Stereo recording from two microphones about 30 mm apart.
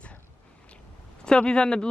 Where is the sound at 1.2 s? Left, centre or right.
Left.